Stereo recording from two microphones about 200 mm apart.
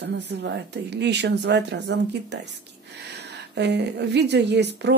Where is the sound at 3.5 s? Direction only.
60° right (ahead or behind).